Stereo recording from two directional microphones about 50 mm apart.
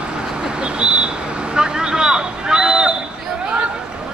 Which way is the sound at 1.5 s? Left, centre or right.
Centre.